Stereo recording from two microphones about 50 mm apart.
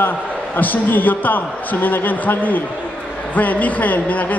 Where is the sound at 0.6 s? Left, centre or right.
Left.